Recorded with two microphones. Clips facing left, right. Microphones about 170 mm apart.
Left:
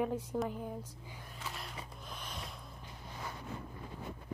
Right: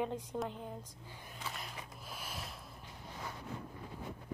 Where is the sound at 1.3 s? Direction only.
Centre (ahead or behind).